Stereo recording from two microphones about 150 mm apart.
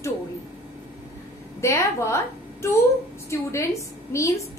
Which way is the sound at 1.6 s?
20° left (ahead or behind).